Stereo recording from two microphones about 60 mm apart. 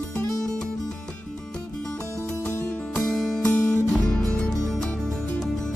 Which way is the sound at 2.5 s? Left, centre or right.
Left.